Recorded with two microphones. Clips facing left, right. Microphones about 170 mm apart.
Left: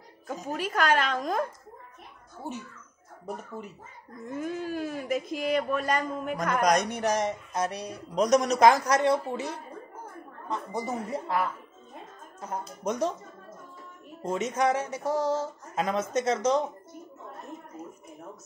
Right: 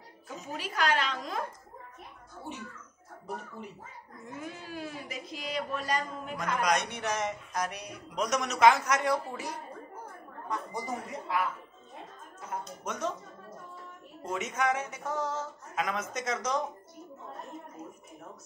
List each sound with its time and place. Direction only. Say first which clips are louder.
0.3 s speech: left 7 dB; 45° left (ahead or behind)
4.4 s a man's voice: left 9 dB; 45° left (ahead or behind); by 11.1 s 25° left (ahead or behind)
12.4 s a man's voice: left 3 dB; 35° left (ahead or behind)
14.2 s a man's voice: left 5 dB; 30° left (ahead or behind)